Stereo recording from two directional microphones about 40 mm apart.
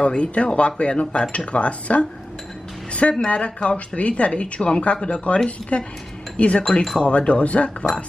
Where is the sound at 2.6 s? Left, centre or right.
Centre.